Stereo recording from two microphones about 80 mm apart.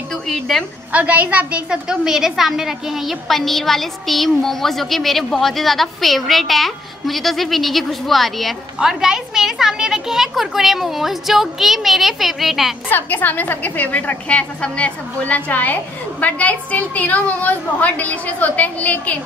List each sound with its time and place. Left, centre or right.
0.3 s a woman's voice: centre
0.9 s a woman's voice: centre
12.9 s a woman's voice: left